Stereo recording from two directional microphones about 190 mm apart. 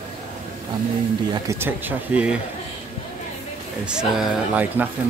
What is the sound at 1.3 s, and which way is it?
A man's voice, 15° right (ahead or behind).